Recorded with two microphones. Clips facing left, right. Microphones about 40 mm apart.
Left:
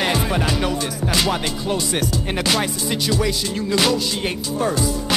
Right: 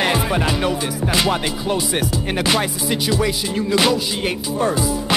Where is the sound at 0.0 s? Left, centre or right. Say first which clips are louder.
Right 2 dB; centre.